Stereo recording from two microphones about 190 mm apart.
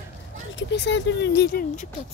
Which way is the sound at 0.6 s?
65° left (ahead or behind).